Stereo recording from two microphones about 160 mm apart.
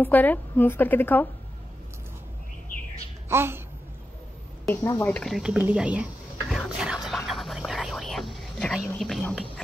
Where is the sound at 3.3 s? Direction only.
15° right (ahead or behind).